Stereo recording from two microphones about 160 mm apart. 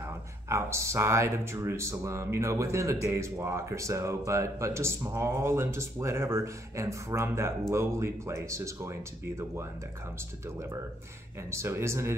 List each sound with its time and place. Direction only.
0.0 s speech: 15° right (ahead or behind)